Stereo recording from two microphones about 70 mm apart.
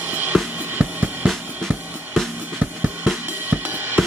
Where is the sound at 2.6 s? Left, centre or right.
Right.